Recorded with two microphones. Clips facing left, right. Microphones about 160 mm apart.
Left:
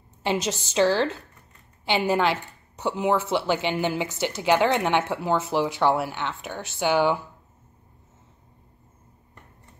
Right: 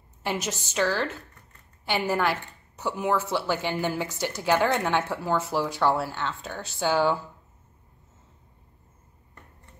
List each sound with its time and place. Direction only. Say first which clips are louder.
0.2 s a woman's voice: left 4 dB; 25° left (ahead or behind)